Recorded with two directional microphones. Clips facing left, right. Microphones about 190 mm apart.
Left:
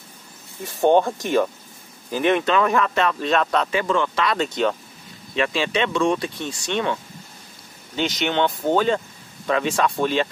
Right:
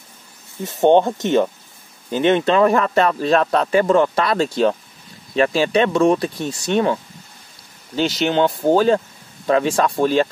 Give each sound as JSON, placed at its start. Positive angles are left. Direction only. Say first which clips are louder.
{"t": 0.7, "sound": "speech", "louder": "right 3 dB", "side_deg": -20}